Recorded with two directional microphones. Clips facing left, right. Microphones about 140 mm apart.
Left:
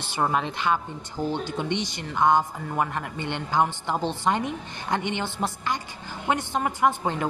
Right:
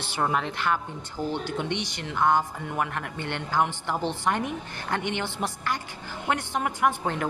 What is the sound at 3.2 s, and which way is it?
Speech, 55° right (ahead or behind).